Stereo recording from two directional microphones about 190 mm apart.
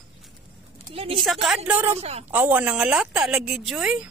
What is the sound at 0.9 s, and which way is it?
Speech, 30° right (ahead or behind).